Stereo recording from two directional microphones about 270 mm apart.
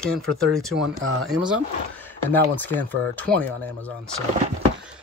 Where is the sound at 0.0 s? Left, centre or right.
Centre.